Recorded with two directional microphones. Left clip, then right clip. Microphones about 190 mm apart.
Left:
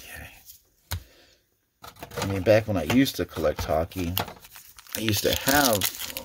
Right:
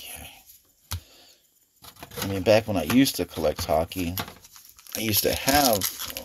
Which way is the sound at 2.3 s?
15° left (ahead or behind).